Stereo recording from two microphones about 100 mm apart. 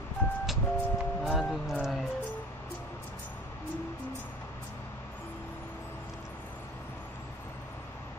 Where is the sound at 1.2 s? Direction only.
Centre (ahead or behind).